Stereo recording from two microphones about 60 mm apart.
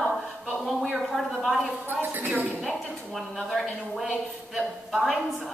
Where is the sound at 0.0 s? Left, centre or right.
Centre.